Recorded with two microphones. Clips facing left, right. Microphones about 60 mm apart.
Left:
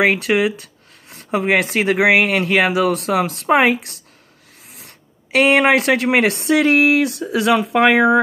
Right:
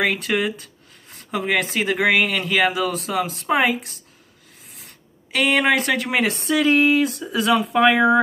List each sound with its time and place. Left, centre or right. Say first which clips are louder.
0.0 s speech: left 5 dB; left
3.4 s speech: left 5 dB; left
4.6 s speech: left 3 dB; left